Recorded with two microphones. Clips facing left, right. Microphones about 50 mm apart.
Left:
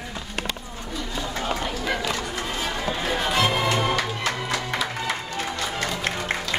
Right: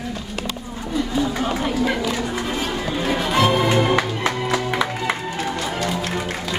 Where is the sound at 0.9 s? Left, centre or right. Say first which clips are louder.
Right 9 dB; right.